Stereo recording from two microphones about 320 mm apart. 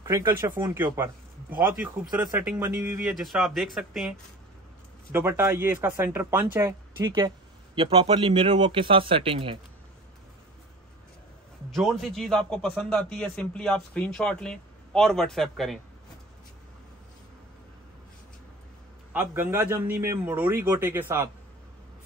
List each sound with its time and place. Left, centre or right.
0.0 s a man's voice: centre
5.1 s speech: centre
11.7 s a man's voice: centre
19.1 s speech: centre